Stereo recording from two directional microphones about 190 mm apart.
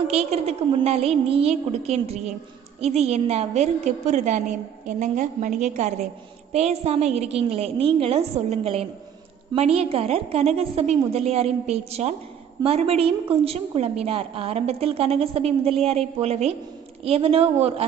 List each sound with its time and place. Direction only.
0.1 s a woman's voice: 35° right (ahead or behind)